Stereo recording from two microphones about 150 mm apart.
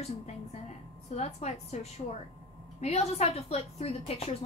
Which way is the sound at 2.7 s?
45° left (ahead or behind).